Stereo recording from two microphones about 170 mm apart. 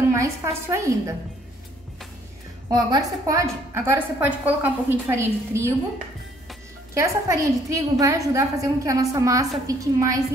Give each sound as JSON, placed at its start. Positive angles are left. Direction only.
{"t": 0.1, "sound": "a woman's voice", "side_deg": -15}
{"t": 2.7, "sound": "a woman's voice", "side_deg": -20}
{"t": 6.9, "sound": "a woman's voice", "side_deg": -15}